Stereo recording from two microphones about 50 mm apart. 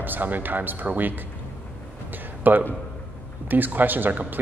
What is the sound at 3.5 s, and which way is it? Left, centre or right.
Speech, right.